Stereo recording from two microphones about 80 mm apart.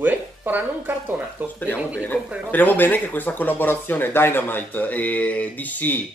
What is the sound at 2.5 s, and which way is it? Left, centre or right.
Speech, left.